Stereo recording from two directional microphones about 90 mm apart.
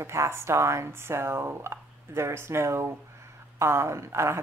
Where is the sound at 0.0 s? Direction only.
30° right (ahead or behind).